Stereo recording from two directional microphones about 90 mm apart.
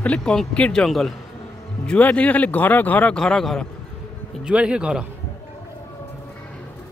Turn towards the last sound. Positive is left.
turn(degrees=-10)  # may be behind; listen again after turning